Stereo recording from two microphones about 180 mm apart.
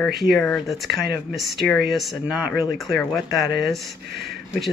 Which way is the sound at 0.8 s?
65° right (ahead or behind).